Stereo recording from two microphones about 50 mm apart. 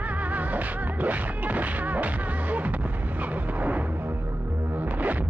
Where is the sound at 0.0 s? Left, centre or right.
Right.